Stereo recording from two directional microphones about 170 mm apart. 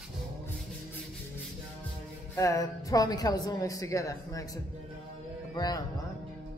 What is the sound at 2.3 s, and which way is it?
A woman's voice, 20° left (ahead or behind).